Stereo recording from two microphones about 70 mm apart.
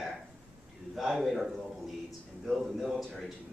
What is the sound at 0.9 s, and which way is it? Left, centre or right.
A man's voice, centre.